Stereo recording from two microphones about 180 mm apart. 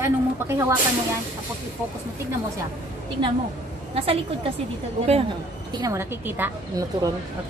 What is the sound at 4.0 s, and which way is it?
Speech, 35° right (ahead or behind).